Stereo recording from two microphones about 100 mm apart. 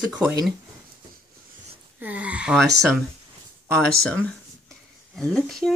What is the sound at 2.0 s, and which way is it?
Speech, 15° right (ahead or behind).